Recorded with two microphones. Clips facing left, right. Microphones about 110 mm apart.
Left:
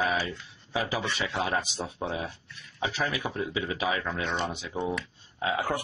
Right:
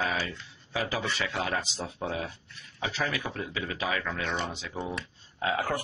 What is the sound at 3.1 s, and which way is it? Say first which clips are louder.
Speech: left 3 dB; 20° left (ahead or behind).